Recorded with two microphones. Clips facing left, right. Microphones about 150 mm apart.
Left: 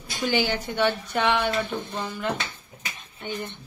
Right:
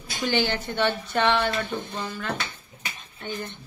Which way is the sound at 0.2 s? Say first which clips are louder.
Even; 10° left (ahead or behind).